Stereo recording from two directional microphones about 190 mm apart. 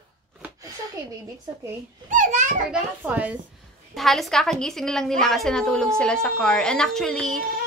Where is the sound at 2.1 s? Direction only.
40° right (ahead or behind).